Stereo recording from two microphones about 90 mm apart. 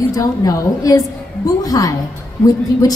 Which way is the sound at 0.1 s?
40° left (ahead or behind).